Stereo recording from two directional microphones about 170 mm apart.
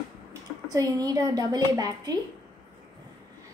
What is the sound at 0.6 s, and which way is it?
A woman's voice, 20° right (ahead or behind).